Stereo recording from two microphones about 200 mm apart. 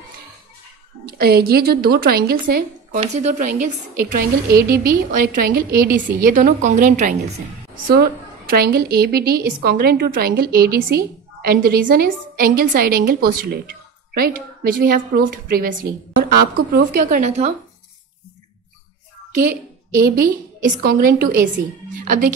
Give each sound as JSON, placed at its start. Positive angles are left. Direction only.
{"t": 1.0, "sound": "a woman's voice", "side_deg": -50}
{"t": 7.8, "sound": "a woman's voice", "side_deg": -50}
{"t": 19.4, "sound": "a woman's voice", "side_deg": -45}